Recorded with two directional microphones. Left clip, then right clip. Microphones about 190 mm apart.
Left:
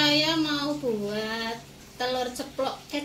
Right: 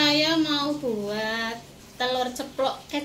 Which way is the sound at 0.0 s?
25° left (ahead or behind).